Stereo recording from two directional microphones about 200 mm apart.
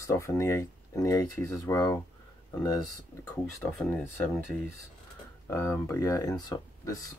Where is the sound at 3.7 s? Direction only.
5° left (ahead or behind).